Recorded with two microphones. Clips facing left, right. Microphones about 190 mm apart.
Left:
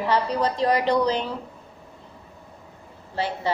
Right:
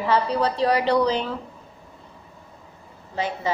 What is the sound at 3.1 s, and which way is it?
Speech, 15° right (ahead or behind).